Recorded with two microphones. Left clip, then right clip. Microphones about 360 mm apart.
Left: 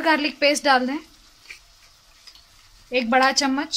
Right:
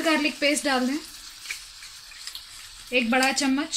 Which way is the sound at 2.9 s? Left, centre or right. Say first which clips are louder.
Left 4 dB; left.